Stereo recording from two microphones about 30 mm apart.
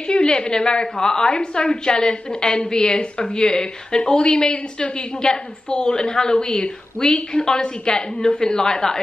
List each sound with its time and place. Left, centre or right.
0.0 s a woman's voice: left